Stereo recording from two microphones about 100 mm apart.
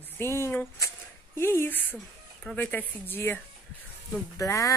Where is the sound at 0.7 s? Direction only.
25° left (ahead or behind).